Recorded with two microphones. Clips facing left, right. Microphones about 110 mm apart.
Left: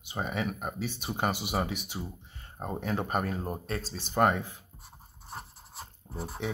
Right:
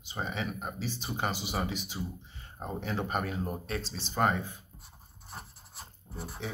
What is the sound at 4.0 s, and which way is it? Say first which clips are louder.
Speech: left 3 dB; 55° left (ahead or behind).